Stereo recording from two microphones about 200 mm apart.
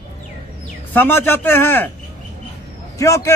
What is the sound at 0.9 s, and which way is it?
A man's voice, 10° left (ahead or behind).